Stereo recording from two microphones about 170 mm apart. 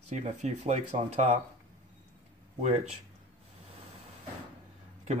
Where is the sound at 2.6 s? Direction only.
40° right (ahead or behind).